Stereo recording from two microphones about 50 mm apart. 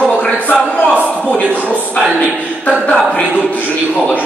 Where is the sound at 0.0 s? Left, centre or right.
Left.